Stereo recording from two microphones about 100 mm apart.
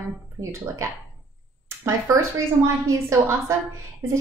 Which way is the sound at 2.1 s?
35° right (ahead or behind).